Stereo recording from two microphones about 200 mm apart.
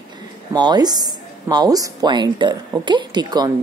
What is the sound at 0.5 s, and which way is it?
Speech, 20° right (ahead or behind).